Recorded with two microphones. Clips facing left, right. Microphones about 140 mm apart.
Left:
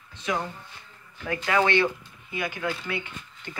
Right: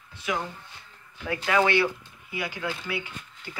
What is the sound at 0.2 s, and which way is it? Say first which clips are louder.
Speech: left 1 dB; 10° right (ahead or behind).